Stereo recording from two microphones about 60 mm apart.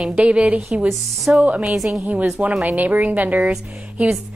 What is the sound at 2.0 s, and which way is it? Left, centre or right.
A woman's voice, right.